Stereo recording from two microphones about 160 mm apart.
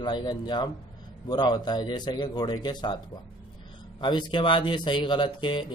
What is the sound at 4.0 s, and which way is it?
A man's voice, 30° left (ahead or behind).